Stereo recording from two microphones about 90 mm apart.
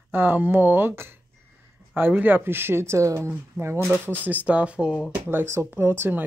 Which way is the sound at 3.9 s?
25° right (ahead or behind).